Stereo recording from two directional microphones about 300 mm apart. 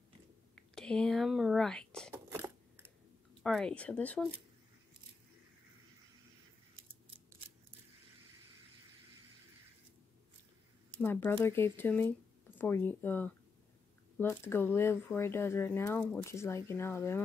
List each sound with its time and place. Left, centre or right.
0.6 s a sound: centre
3.4 s speech: centre
11.0 s speech: centre